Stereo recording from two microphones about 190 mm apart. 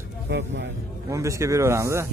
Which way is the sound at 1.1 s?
15° right (ahead or behind).